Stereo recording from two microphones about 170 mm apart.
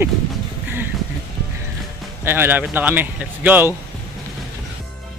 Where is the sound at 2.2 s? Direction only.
10° right (ahead or behind).